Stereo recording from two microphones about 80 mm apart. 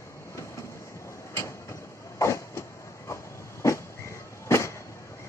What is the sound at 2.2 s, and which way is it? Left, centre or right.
Train, left.